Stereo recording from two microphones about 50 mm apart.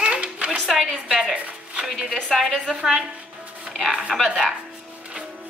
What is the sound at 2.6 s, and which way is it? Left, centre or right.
Speech, right.